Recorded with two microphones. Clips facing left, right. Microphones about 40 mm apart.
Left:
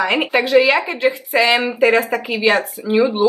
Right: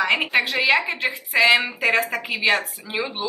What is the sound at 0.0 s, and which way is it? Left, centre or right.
Speech, centre.